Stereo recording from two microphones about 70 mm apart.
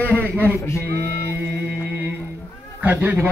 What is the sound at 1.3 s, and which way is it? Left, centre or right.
Music, right.